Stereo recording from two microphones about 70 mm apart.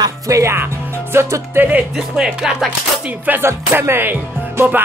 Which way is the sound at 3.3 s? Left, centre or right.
Right.